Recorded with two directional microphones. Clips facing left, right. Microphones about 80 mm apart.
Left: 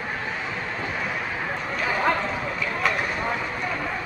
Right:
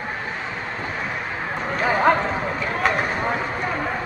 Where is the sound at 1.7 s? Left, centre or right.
Right.